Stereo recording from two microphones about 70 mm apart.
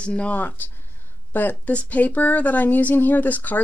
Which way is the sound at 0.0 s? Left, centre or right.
Centre.